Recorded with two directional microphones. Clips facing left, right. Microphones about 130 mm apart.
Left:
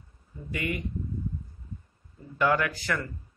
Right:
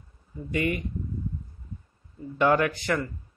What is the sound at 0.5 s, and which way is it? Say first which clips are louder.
Speech: right 5 dB; 30° right (ahead or behind).